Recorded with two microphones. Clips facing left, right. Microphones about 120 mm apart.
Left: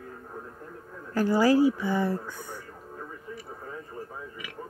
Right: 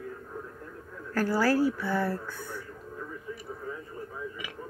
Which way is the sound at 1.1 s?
15° left (ahead or behind).